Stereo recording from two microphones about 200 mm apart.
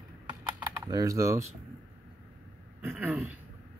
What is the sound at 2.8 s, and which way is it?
Speech, 10° right (ahead or behind).